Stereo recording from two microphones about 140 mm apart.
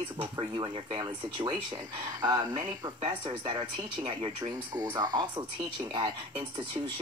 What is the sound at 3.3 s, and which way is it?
Speech, 40° right (ahead or behind).